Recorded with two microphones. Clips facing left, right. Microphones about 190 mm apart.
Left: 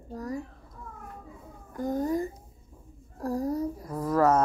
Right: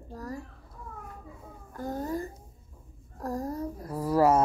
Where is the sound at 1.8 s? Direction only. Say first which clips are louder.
Left 5 dB; 15° left (ahead or behind).